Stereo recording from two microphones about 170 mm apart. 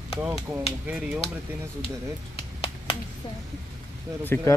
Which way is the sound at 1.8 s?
35° left (ahead or behind).